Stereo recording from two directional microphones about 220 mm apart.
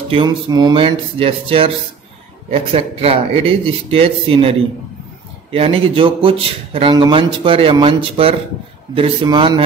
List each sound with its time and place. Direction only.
0.1 s speech: 20° right (ahead or behind)